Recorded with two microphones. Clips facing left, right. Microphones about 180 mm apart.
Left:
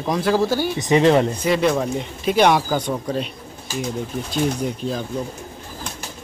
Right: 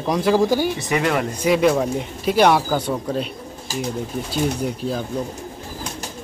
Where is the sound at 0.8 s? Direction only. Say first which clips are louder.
Left 6 dB; 25° left (ahead or behind).